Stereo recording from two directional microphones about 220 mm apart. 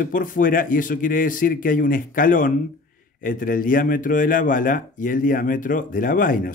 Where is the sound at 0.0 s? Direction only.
40° left (ahead or behind).